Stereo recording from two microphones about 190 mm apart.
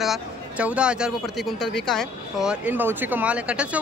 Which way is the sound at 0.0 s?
5° right (ahead or behind).